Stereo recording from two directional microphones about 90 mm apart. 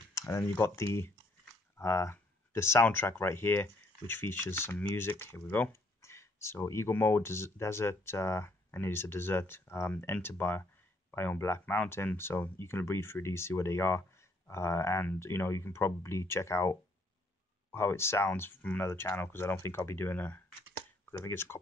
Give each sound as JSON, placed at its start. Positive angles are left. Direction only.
{"t": 0.1, "sound": "speech", "side_deg": 35}